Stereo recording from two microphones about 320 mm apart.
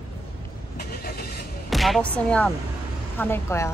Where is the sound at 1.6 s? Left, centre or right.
Centre.